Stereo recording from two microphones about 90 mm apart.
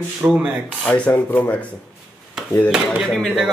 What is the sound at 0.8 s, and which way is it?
Speech, 15° left (ahead or behind).